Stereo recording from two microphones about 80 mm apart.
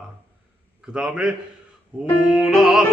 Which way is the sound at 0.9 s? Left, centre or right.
Centre.